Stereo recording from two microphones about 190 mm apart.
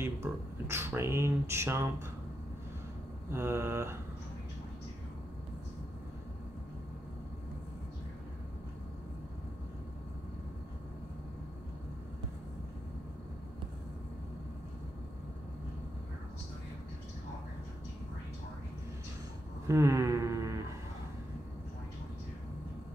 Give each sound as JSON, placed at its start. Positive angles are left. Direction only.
{"t": 0.0, "sound": "speech", "side_deg": -15}
{"t": 3.3, "sound": "mantra", "side_deg": -10}
{"t": 19.7, "sound": "a sound", "side_deg": -15}